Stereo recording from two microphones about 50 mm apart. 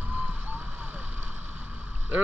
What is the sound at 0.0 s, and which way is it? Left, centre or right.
Vehicle, right.